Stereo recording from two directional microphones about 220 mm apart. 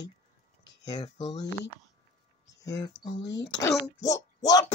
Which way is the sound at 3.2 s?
55° left (ahead or behind).